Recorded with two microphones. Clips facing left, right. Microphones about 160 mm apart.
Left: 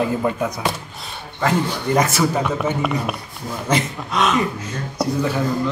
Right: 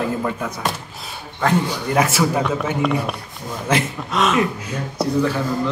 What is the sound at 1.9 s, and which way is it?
Speech, 5° right (ahead or behind).